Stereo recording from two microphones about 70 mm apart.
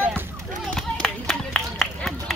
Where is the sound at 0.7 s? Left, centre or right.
Centre.